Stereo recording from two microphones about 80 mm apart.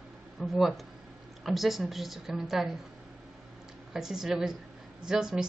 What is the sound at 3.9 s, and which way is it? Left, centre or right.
Speech, centre.